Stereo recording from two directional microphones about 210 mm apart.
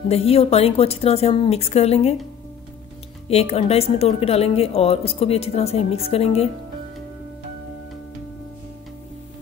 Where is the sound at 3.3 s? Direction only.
30° left (ahead or behind).